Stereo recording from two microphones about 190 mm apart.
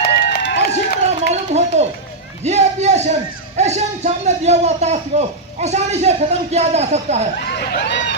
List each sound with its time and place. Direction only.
0.0 s run: 65° left (ahead or behind)
0.7 s a sound: 35° right (ahead or behind)
2.4 s speech: 35° right (ahead or behind)
7.4 s speech: 60° left (ahead or behind)